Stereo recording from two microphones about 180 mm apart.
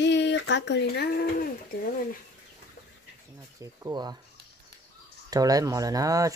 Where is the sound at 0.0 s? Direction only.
75° left (ahead or behind); by 1.5 s 55° left (ahead or behind).